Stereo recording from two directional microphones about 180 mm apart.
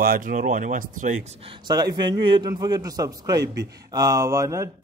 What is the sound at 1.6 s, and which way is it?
A man's voice, 25° right (ahead or behind).